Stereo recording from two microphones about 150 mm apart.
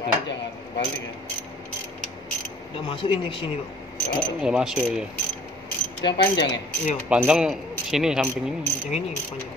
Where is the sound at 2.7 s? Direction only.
35° left (ahead or behind).